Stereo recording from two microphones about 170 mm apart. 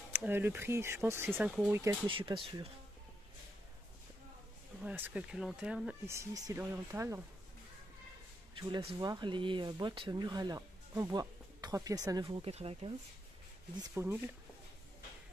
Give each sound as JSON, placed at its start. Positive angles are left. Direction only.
{"t": 0.1, "sound": "speech", "side_deg": -10}
{"t": 2.0, "sound": "speech", "side_deg": -30}
{"t": 4.8, "sound": "speech", "side_deg": -10}
{"t": 6.0, "sound": "speech", "side_deg": -20}
{"t": 8.5, "sound": "speech", "side_deg": -30}
{"t": 12.4, "sound": "speech", "side_deg": -35}
{"t": 13.9, "sound": "speech", "side_deg": -15}